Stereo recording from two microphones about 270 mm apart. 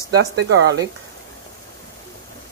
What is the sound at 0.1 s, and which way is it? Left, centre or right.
Speech, right.